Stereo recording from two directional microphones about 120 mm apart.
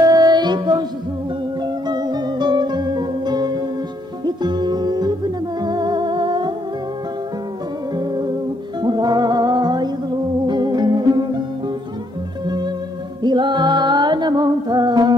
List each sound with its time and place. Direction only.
0.0 s music: 30° right (ahead or behind)
1.9 s music: 35° right (ahead or behind)
8.8 s music: 35° right (ahead or behind)
13.2 s music: 40° right (ahead or behind)